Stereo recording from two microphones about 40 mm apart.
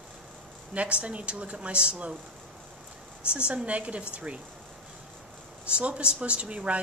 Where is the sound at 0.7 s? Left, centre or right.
Right.